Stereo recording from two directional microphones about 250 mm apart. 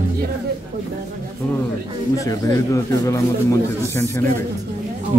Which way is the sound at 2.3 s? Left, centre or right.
Centre.